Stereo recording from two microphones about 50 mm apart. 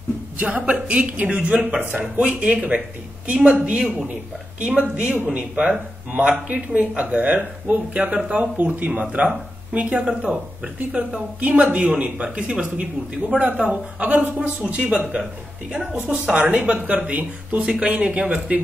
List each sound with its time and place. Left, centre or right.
0.4 s speech: right
5.1 s speech: right
5.6 s speech: right
15.9 s speech: right